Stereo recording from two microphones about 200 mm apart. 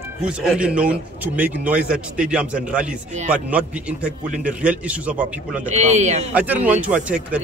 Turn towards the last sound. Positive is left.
turn(degrees=-5)  # may be behind; listen again after turning